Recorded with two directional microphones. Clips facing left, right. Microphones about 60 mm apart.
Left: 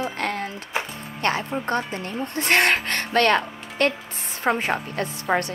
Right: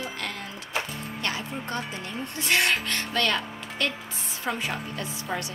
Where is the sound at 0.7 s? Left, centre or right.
Left.